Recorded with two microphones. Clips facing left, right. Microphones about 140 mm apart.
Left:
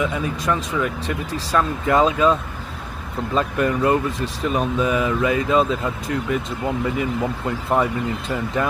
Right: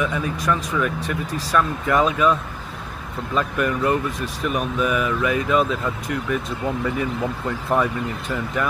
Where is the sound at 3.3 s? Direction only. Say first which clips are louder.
Left 2 dB; 25° left (ahead or behind).